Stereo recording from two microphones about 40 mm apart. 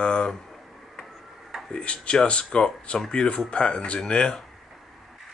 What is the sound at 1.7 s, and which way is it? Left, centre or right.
Speech, left.